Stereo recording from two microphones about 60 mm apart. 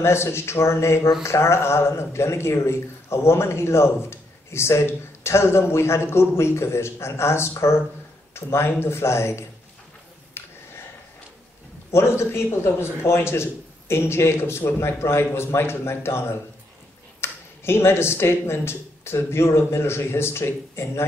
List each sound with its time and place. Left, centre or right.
0.0 s a man's voice: left
10.4 s a sound: left
11.9 s a man's voice: left